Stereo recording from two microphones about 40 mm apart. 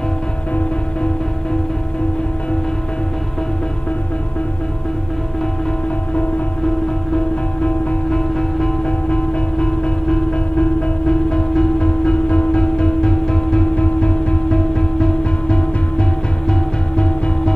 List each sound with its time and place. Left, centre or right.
7.6 s music: left
8.1 s music: centre
8.8 s music: left
10.3 s music: left
13.7 s music: left